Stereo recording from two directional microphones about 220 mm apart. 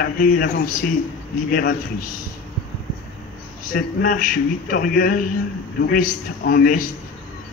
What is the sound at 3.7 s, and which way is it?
A man's voice, 40° left (ahead or behind).